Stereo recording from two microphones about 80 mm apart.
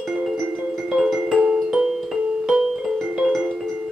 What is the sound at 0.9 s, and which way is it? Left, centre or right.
Music, centre.